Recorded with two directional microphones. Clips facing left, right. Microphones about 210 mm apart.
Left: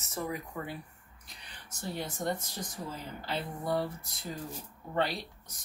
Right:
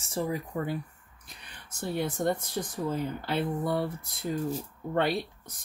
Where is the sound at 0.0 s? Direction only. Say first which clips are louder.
Right 5 dB; 30° right (ahead or behind).